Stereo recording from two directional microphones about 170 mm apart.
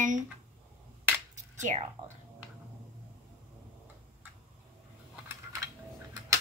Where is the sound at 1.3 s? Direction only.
45° right (ahead or behind).